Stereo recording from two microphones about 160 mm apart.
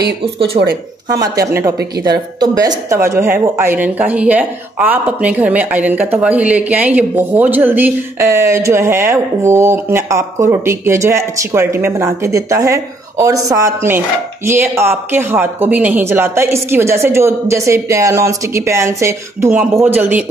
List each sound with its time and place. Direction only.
0.6 s speech: 45° right (ahead or behind)
1.1 s a woman's voice: 20° right (ahead or behind)